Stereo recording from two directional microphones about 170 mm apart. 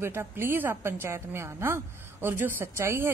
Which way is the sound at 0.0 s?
15° right (ahead or behind).